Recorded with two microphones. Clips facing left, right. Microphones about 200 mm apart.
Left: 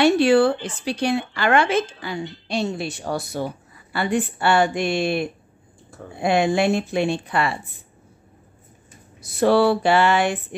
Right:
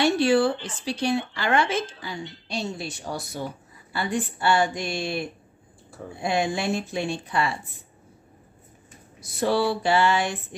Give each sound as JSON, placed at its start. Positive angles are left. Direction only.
{"t": 0.0, "sound": "speech", "side_deg": 65}
{"t": 9.4, "sound": "speech", "side_deg": 60}